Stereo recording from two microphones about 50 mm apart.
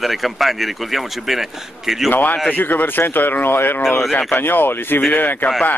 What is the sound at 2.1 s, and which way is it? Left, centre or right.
Speech, left.